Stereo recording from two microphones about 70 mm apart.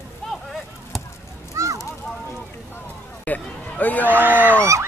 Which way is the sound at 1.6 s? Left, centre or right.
Right.